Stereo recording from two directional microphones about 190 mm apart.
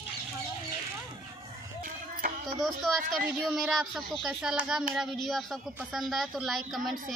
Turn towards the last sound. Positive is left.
turn(degrees=0)  # may be behind; listen again after turning